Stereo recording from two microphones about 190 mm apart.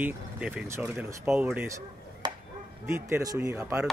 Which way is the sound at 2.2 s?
25° right (ahead or behind).